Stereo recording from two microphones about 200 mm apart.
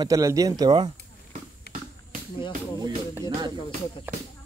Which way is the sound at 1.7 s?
55° left (ahead or behind).